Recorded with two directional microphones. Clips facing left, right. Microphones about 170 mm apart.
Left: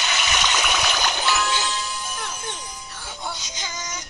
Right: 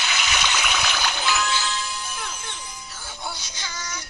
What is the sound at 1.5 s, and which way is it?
Music, 15° left (ahead or behind).